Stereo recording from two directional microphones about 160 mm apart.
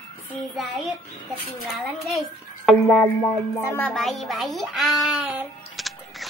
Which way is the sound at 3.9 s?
Centre (ahead or behind).